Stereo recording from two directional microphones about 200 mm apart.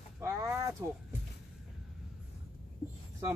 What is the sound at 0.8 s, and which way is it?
Speech, 15° right (ahead or behind).